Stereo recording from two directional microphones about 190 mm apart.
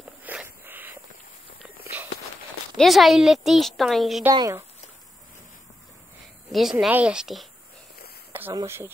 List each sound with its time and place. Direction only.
0.2 s a sound: 10° right (ahead or behind)
2.8 s a woman's voice: centre (ahead or behind)
4.3 s speech: 20° right (ahead or behind)
6.5 s a woman's voice: centre (ahead or behind)